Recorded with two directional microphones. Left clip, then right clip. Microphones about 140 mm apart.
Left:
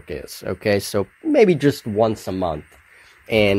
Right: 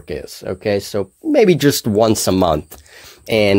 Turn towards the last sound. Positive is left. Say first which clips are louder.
# right 3 dB
turn(degrees=-20)  # may be behind; listen again after turning